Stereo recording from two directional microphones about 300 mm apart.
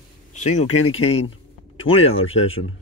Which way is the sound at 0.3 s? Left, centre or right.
Left.